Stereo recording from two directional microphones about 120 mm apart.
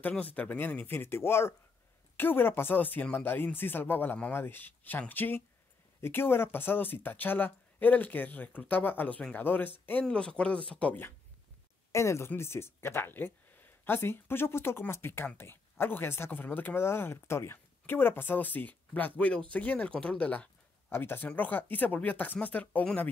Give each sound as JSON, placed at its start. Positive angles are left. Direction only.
{"t": 0.0, "sound": "speech", "side_deg": 15}